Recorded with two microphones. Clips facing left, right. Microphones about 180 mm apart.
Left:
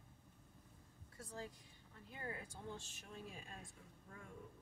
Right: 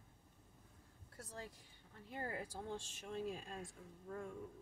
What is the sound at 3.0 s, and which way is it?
Speech, 75° right (ahead or behind).